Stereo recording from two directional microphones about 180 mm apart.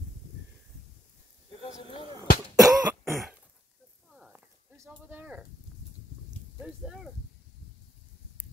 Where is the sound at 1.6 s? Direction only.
35° left (ahead or behind).